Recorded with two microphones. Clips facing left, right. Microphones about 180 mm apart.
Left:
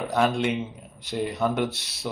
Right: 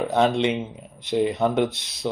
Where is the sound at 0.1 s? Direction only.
20° right (ahead or behind).